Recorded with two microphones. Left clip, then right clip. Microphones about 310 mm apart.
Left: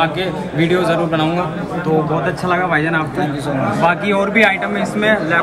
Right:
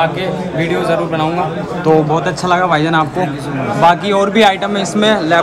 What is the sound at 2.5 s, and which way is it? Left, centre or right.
A man's voice, centre.